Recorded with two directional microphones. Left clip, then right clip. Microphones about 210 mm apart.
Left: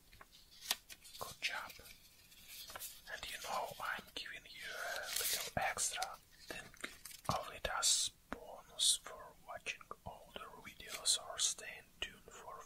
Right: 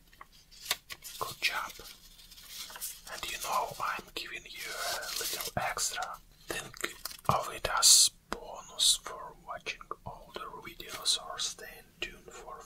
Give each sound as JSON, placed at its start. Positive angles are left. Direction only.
{"t": 1.1, "sound": "whispering", "side_deg": 25}
{"t": 3.1, "sound": "whispering", "side_deg": 25}
{"t": 6.4, "sound": "whispering", "side_deg": 10}
{"t": 11.0, "sound": "whispering", "side_deg": 55}